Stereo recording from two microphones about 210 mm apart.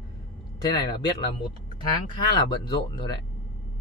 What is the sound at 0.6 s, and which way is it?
Speech, 20° left (ahead or behind).